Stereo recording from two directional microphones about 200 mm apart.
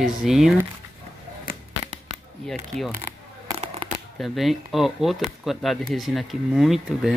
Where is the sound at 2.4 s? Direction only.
Centre (ahead or behind).